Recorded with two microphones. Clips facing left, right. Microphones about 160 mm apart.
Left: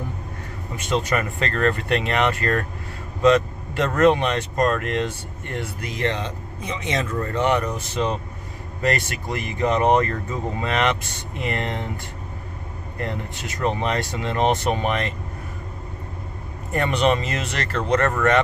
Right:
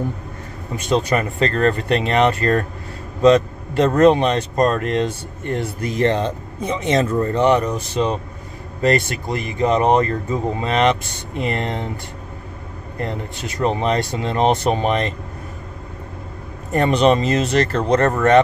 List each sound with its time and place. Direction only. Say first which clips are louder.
0.8 s speech: right 4 dB; 35° right (ahead or behind)
5.5 s speech: right 7 dB; 40° right (ahead or behind)
13.6 s speech: right 4 dB; 25° right (ahead or behind)
16.7 s speech: right 5 dB; 35° right (ahead or behind)